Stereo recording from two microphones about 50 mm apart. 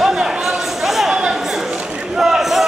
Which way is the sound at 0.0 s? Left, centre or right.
Centre.